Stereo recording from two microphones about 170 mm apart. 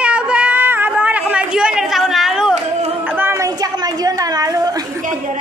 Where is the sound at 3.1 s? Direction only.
15° right (ahead or behind).